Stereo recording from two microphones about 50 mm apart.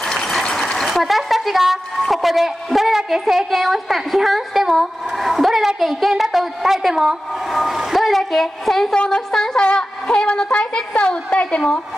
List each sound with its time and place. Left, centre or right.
0.0 s a sound: centre
0.8 s a woman's voice: centre
8.9 s a woman's voice: centre